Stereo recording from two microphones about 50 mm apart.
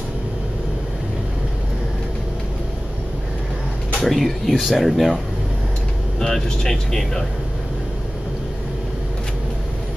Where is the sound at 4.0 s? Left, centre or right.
Centre.